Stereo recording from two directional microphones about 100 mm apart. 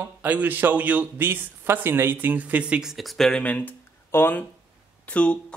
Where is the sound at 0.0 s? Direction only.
15° right (ahead or behind).